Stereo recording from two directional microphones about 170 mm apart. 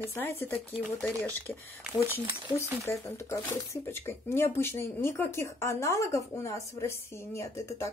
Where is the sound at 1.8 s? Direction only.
10° right (ahead or behind).